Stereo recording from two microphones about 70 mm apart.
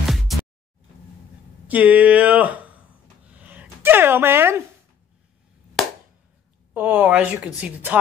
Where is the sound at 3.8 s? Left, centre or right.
Right.